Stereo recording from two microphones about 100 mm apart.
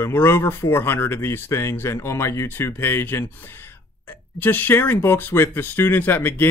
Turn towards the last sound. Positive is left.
turn(degrees=20)  # may be behind; listen again after turning